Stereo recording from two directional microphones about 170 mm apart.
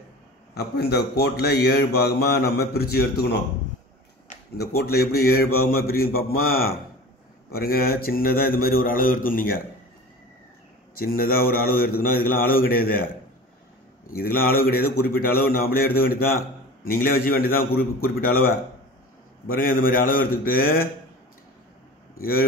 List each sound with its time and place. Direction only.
0.6 s speech: 70° left (ahead or behind)
4.6 s speech: 65° left (ahead or behind)
11.0 s speech: 60° left (ahead or behind)
14.0 s speech: 60° left (ahead or behind)
19.4 s speech: 55° left (ahead or behind)